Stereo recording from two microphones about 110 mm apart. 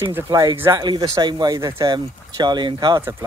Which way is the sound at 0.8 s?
40° right (ahead or behind).